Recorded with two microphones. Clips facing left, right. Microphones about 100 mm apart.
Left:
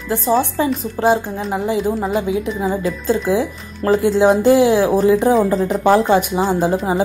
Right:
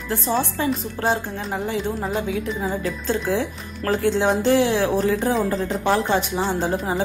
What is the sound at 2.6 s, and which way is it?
Speech, 15° left (ahead or behind).